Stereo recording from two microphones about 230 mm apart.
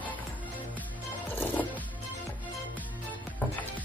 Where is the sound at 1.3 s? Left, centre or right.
Centre.